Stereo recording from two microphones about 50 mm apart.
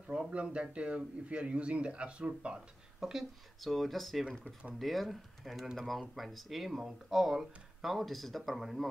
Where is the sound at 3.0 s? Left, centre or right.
Centre.